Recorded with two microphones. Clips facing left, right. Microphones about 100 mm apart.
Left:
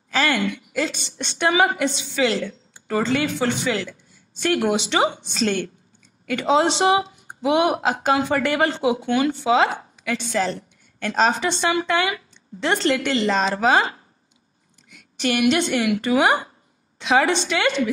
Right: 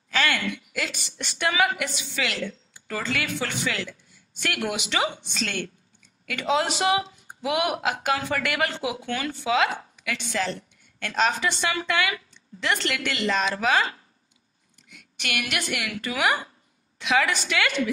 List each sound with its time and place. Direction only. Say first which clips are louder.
0.1 s a woman's voice: left 4 dB; 30° left (ahead or behind)